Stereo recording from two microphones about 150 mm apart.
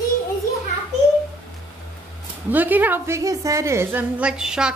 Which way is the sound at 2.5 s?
10° right (ahead or behind).